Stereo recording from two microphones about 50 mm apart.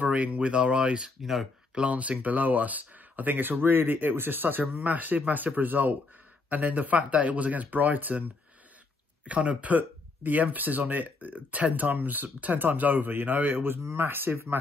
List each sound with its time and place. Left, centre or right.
0.0 s speech: right
1.2 s speech: centre
1.8 s speech: right
9.2 s speech: right